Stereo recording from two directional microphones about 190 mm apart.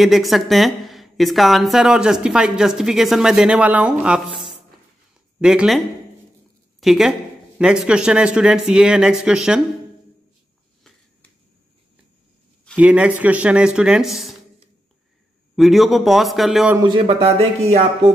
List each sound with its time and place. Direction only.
0.0 s speech: centre (ahead or behind)
5.4 s speech: 5° right (ahead or behind)
6.8 s speech: centre (ahead or behind)
12.7 s speech: 5° right (ahead or behind)
15.5 s speech: centre (ahead or behind)
16.7 s speech: 25° right (ahead or behind)